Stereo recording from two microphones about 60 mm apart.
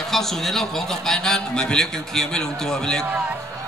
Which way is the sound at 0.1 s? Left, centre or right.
Centre.